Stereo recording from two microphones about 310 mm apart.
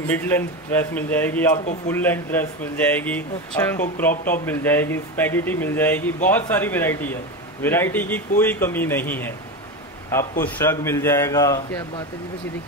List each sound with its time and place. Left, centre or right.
0.1 s speech: centre
10.4 s speech: centre